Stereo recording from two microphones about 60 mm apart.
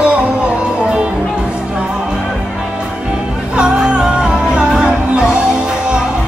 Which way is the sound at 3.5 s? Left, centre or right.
Centre.